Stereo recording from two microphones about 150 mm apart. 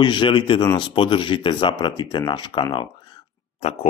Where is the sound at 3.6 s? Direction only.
45° left (ahead or behind).